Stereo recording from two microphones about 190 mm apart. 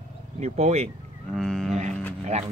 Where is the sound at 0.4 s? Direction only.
35° right (ahead or behind).